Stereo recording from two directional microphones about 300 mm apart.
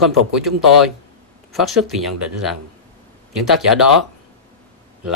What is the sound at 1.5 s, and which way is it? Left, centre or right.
Speech, centre.